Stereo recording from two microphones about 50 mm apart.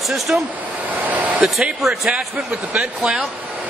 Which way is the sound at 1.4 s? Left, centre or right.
Centre.